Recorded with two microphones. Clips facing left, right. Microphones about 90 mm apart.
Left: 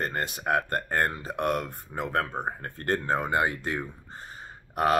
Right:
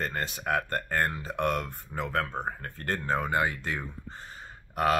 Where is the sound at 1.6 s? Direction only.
20° left (ahead or behind).